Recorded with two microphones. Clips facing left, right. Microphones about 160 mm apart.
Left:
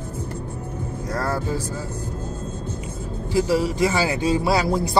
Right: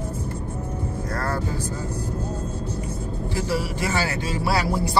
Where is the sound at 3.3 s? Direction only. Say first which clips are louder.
Left 7 dB; 15° left (ahead or behind).